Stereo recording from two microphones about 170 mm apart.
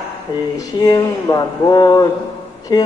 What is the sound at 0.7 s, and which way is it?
Speech, 25° left (ahead or behind).